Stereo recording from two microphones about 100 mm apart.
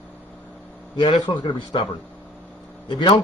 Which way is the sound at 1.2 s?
50° left (ahead or behind).